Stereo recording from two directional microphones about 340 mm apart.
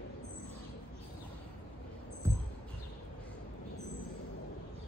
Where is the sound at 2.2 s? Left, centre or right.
Centre.